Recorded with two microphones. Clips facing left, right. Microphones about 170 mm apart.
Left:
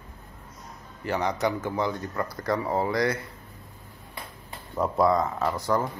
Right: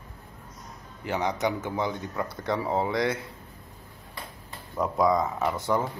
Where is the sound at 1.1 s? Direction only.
15° right (ahead or behind).